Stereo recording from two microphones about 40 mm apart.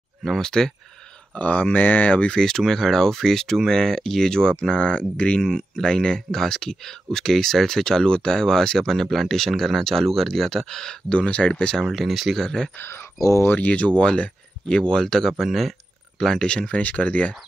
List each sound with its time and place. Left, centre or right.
0.2 s speech: centre
1.3 s speech: left
2.0 s speech: left
2.3 s speech: centre
4.7 s speech: left; by 11.0 s centre
11.1 s speech: left
11.9 s speech: centre
12.4 s speech: centre
12.7 s speech: left
13.6 s speech: left; by 15.7 s centre
16.3 s speech: left